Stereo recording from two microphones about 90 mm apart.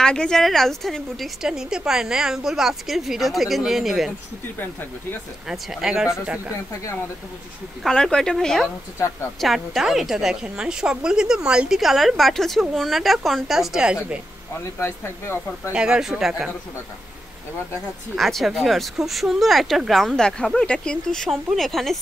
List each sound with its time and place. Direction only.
0.0 s a woman's voice: 10° left (ahead or behind)
5.5 s speech: 5° right (ahead or behind)
7.8 s speech: 5° left (ahead or behind)
8.9 s a woman's voice: 30° left (ahead or behind)
9.4 s a woman's voice: centre (ahead or behind)
14.6 s speech: 25° left (ahead or behind)
15.7 s a woman's voice: 10° right (ahead or behind)
18.1 s a woman's voice: centre (ahead or behind)